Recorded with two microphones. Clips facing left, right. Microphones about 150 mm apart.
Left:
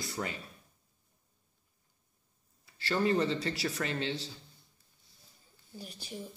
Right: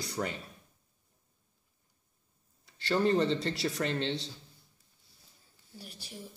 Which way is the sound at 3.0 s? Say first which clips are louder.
Right 2 dB; centre (ahead or behind).